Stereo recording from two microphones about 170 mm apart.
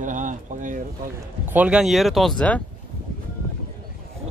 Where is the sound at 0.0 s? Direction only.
50° right (ahead or behind).